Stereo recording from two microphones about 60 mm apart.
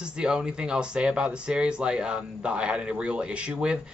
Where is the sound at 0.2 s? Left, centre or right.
Centre.